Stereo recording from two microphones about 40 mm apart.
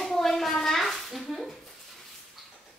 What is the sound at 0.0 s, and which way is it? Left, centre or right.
Hands, centre.